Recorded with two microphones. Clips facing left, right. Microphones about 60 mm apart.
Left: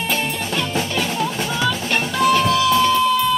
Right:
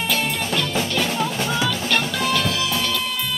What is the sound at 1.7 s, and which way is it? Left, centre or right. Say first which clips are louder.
Music: left 1 dB; left.